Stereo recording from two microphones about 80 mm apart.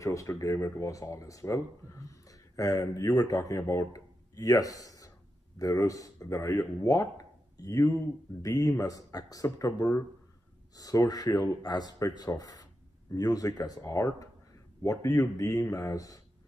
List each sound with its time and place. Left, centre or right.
0.0 s speech: left